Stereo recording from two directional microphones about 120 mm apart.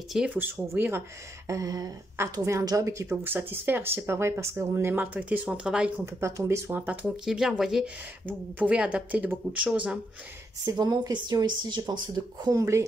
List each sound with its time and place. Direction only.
0.1 s speech: 10° right (ahead or behind)
1.5 s a woman's voice: 30° right (ahead or behind); by 5.9 s 10° right (ahead or behind)
6.0 s speech: 20° right (ahead or behind)
10.6 s speech: 30° right (ahead or behind)
12.4 s a woman's voice: 25° right (ahead or behind)